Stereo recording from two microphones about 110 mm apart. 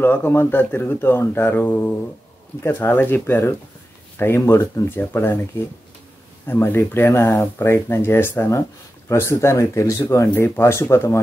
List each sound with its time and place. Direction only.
0.0 s speech: 20° left (ahead or behind)
6.4 s speech: 20° left (ahead or behind)
10.3 s speech: 15° left (ahead or behind)